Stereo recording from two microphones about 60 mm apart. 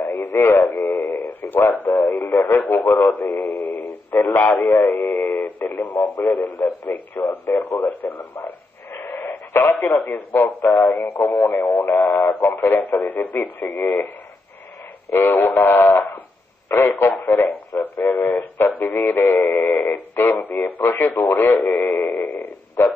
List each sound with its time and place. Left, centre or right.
0.0 s radio: left
0.7 s speech: left
4.4 s speech: left
5.3 s radio: left
6.3 s speech: left
13.0 s speech: left
15.0 s speech: left
17.7 s speech: left
19.4 s synthetic singing: left
19.8 s speech: left
21.8 s a sound: left
22.2 s a sound: left
22.8 s speech: left